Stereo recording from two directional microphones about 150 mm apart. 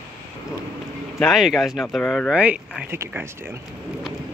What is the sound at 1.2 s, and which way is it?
Speech, centre (ahead or behind).